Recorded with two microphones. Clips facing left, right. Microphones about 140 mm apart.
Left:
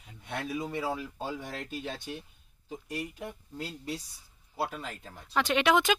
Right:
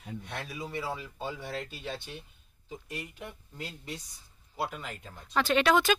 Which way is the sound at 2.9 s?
35° left (ahead or behind).